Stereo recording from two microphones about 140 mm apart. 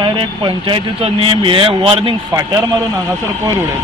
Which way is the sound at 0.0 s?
35° right (ahead or behind).